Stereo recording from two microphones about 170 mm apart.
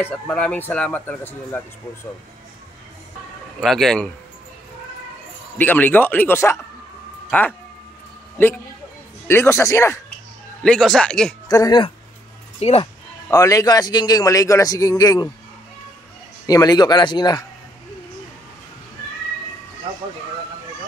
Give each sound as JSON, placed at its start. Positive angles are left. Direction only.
{"t": 0.0, "sound": "speech", "side_deg": 10}
{"t": 3.6, "sound": "speech", "side_deg": 0}
{"t": 5.6, "sound": "speech", "side_deg": 10}
{"t": 9.3, "sound": "speech", "side_deg": 15}
{"t": 10.6, "sound": "speech", "side_deg": 0}
{"t": 11.4, "sound": "speech", "side_deg": 25}
{"t": 12.5, "sound": "speech", "side_deg": 40}
{"t": 13.3, "sound": "a man's voice", "side_deg": 20}
{"t": 16.4, "sound": "a man's voice", "side_deg": 20}